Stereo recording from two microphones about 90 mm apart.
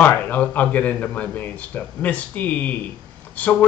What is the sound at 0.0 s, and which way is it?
Speech, 20° left (ahead or behind).